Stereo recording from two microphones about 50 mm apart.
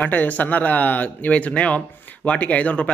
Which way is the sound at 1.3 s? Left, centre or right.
Left.